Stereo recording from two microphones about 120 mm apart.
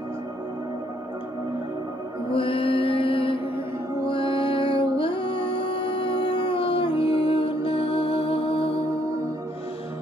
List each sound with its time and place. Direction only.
2.3 s music: 50° left (ahead or behind)